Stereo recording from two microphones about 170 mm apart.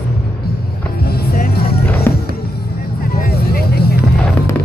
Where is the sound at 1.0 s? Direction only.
65° left (ahead or behind).